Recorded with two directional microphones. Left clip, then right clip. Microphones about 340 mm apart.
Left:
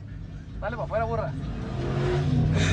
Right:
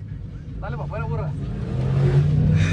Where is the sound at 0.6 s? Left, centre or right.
Left.